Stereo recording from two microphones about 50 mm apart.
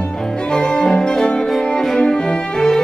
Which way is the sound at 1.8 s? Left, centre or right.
Centre.